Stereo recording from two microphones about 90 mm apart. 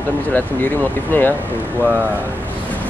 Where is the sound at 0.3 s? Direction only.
20° left (ahead or behind).